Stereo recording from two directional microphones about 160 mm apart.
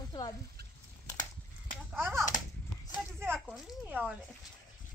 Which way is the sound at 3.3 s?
Centre (ahead or behind).